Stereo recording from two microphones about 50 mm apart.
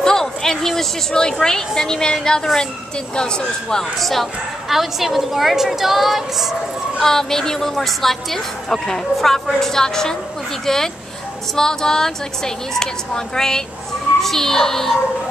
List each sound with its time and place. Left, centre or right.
0.0 s a sound: centre
1.7 s a woman's voice: centre
4.0 s a woman's voice: centre
7.0 s a woman's voice: centre